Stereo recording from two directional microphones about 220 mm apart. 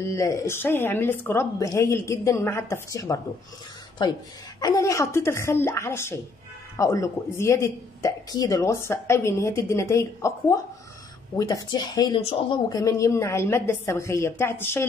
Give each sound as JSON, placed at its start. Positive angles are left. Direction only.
{"t": 0.0, "sound": "a woman's voice", "side_deg": 15}
{"t": 4.6, "sound": "a woman's voice", "side_deg": 15}